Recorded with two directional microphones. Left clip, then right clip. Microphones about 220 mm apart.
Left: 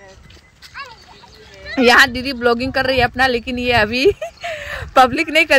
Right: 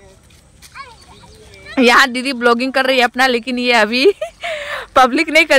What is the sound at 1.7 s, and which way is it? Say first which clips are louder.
Speech: even; 15° right (ahead or behind).